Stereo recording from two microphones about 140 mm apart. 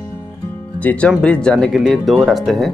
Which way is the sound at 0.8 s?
10° left (ahead or behind).